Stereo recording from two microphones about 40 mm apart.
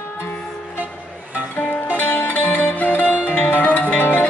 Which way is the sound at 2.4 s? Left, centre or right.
Left.